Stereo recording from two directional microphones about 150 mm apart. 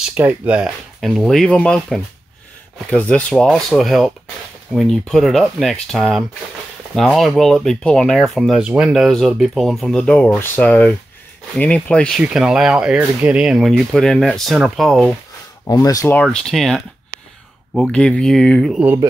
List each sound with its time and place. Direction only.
0.1 s speech: 10° right (ahead or behind)
1.0 s speech: centre (ahead or behind)
15.6 s speech: 25° left (ahead or behind)
16.1 s speech: 5° left (ahead or behind)